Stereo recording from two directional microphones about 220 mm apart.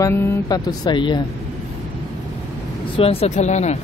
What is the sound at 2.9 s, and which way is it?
Speech, 25° left (ahead or behind).